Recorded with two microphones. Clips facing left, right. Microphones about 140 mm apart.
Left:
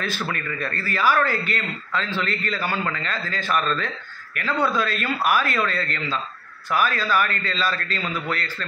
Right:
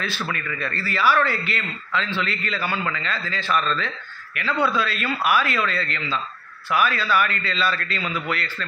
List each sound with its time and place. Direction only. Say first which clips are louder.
0.3 s a man's voice: even; 40° left (ahead or behind)